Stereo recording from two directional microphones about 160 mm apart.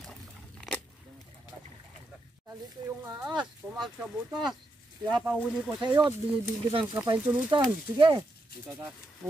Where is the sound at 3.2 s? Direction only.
5° right (ahead or behind).